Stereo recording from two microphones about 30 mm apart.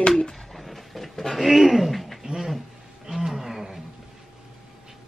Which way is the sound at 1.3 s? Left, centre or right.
Centre.